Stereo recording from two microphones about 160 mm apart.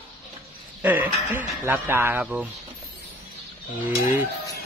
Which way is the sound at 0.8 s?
10° right (ahead or behind).